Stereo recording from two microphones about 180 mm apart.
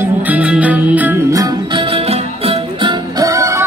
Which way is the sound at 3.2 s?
15° right (ahead or behind).